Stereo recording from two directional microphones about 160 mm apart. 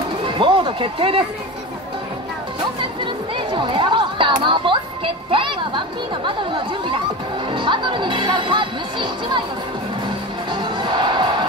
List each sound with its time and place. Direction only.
0.2 s music: 30° right (ahead or behind)
2.8 s music: 30° right (ahead or behind)
6.2 s speech: 30° right (ahead or behind)
10.0 s music: 30° right (ahead or behind)